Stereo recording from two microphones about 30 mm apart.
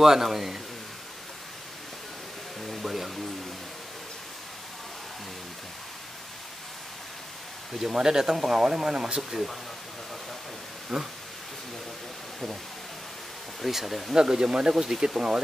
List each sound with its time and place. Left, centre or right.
0.0 s speech: centre
2.7 s speech: centre
7.9 s speech: right
10.9 s speech: centre
13.7 s speech: centre
14.1 s speech: right